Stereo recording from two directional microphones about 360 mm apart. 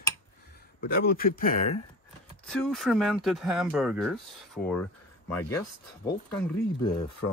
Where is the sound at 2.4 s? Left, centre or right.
Centre.